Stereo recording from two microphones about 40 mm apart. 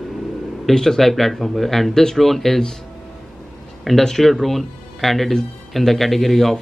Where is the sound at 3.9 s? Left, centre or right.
Centre.